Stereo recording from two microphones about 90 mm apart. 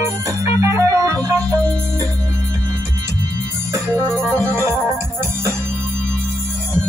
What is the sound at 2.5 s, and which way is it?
Music, 35° right (ahead or behind).